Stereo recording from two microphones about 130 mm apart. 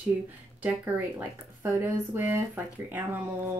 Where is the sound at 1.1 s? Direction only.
20° right (ahead or behind).